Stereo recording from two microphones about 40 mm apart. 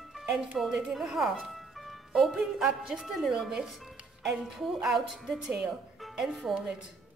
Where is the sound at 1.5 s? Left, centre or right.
Centre.